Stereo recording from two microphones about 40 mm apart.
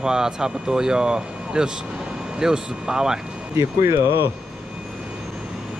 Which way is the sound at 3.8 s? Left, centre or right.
Right.